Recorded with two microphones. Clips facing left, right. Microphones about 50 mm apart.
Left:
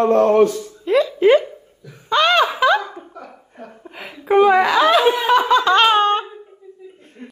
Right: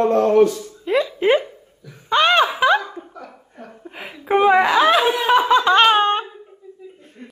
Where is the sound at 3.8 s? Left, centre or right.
Centre.